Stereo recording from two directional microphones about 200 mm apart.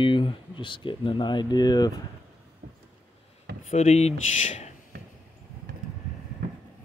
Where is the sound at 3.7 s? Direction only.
35° left (ahead or behind).